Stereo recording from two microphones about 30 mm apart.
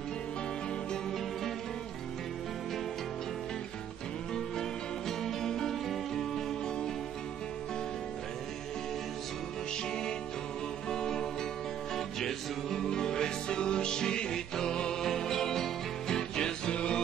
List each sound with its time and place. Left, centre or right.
4.3 s music: centre
10.9 s music: centre
12.8 s music: left
16.2 s music: left
16.7 s music: left